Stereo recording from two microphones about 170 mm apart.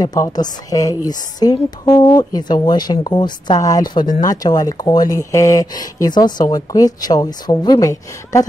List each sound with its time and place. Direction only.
0.0 s speech: 20° left (ahead or behind)